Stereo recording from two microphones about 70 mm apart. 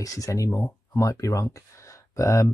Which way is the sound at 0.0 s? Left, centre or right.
Left.